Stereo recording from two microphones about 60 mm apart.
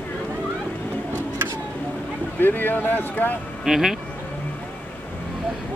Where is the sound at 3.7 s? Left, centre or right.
Centre.